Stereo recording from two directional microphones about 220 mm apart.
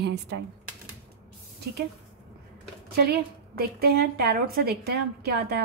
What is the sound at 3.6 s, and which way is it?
A woman's voice, 45° right (ahead or behind).